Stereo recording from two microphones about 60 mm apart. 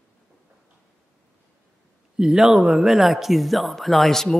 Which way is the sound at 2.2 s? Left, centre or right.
Centre.